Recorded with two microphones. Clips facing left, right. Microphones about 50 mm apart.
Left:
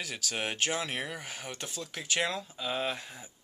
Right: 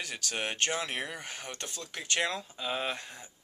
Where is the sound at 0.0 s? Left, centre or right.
Centre.